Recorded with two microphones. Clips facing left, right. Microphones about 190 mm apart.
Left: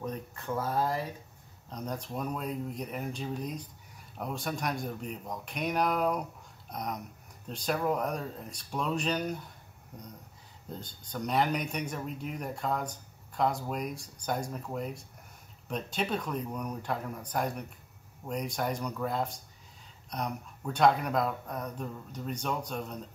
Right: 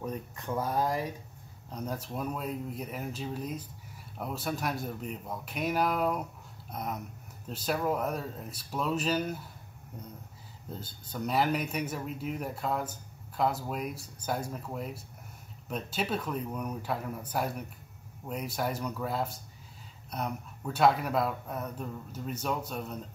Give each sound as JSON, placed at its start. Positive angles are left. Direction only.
{"t": 0.0, "sound": "a man's voice", "side_deg": -15}
{"t": 10.7, "sound": "a man's voice", "side_deg": -5}